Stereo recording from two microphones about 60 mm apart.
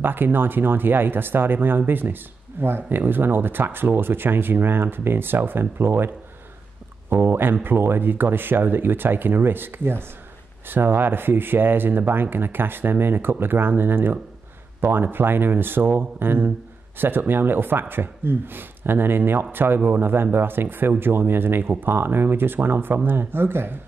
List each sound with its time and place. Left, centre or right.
0.0 s speech: right